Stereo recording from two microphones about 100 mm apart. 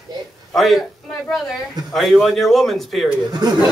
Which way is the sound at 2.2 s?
Centre (ahead or behind).